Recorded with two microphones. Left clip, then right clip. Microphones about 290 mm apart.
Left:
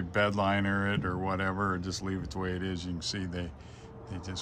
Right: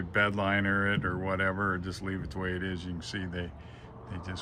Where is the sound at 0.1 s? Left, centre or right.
Centre.